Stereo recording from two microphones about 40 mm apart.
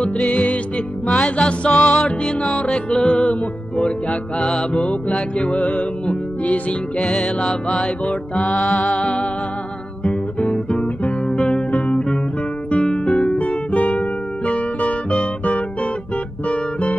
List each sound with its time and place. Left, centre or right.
0.0 s music: left
7.0 s music: left
8.0 s music: left
10.0 s guitar: left
12.8 s music: left
15.4 s guitar: left
16.4 s music: left